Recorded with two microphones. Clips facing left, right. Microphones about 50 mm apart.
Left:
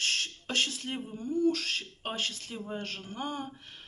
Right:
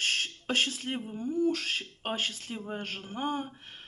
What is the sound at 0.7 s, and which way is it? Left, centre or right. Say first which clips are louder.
Speech: right 2 dB; right.